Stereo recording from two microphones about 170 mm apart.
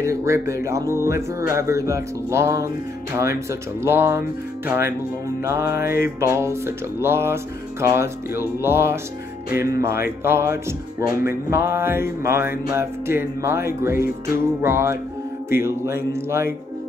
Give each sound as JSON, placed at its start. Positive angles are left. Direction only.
{"t": 0.0, "sound": "speech", "side_deg": -15}